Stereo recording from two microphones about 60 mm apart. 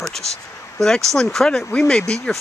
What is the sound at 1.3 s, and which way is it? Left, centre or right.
Speech, centre.